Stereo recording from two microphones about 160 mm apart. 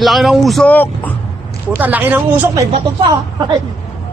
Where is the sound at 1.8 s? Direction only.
10° right (ahead or behind).